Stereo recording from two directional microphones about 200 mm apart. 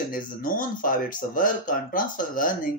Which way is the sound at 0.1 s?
45° left (ahead or behind).